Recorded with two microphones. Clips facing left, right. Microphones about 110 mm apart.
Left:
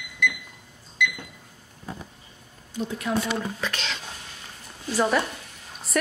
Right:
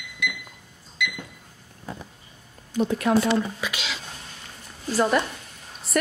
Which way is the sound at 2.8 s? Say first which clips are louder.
Right 6 dB; 55° right (ahead or behind).